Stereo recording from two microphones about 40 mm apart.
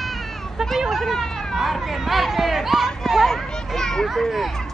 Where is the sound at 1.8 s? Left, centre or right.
Centre.